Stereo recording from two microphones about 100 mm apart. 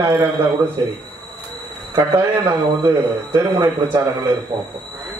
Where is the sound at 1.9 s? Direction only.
40° right (ahead or behind).